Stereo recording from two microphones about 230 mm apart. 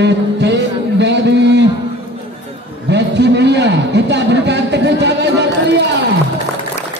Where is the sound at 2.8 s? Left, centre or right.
Right.